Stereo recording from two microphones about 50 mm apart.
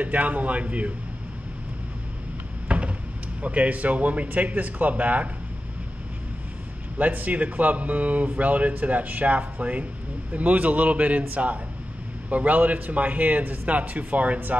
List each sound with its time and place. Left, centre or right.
0.0 s speech: right
2.7 s a sound: right
3.4 s a man's voice: right
7.0 s a man's voice: right